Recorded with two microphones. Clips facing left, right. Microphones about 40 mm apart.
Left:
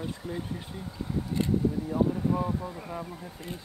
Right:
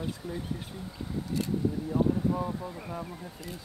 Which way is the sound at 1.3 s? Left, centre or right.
Left.